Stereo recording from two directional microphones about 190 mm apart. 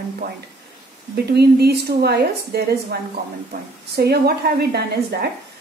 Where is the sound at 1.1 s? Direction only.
55° right (ahead or behind).